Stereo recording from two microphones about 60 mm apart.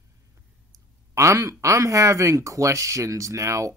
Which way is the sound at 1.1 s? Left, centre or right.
Right.